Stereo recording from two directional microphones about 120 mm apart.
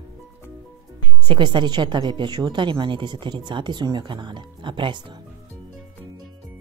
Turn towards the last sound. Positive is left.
turn(degrees=-40)  # may be behind; listen again after turning